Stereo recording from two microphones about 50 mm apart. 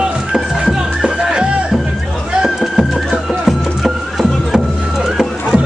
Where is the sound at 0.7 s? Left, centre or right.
Centre.